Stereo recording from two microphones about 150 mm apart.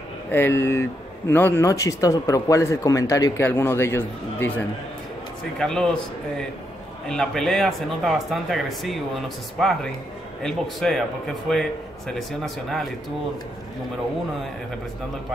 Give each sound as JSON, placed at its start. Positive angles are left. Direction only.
{"t": 0.3, "sound": "speech", "side_deg": 15}
{"t": 5.6, "sound": "speech", "side_deg": 5}